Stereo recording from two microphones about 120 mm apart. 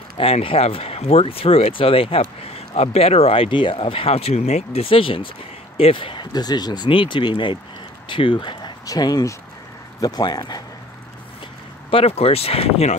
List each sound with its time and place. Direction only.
0.2 s speech: 50° left (ahead or behind); by 10.6 s 35° left (ahead or behind)
11.9 s speech: 55° left (ahead or behind)